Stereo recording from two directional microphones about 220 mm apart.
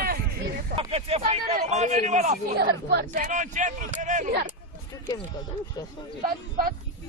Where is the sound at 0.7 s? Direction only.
25° right (ahead or behind).